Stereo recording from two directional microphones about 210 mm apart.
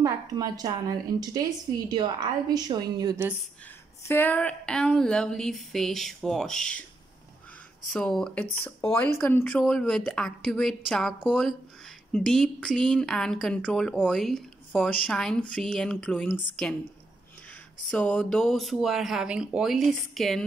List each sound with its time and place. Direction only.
0.0 s a woman's voice: 15° right (ahead or behind)
4.1 s speech: 10° left (ahead or behind)
7.9 s speech: 5° left (ahead or behind)